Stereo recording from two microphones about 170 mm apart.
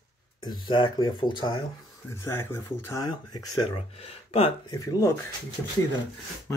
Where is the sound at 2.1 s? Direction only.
15° left (ahead or behind).